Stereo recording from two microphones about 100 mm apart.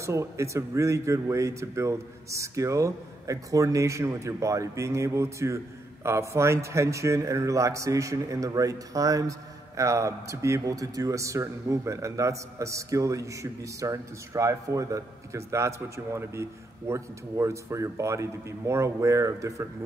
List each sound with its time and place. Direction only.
0.0 s speech: 30° right (ahead or behind)